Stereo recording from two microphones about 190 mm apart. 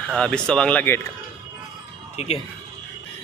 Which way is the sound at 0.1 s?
5° left (ahead or behind).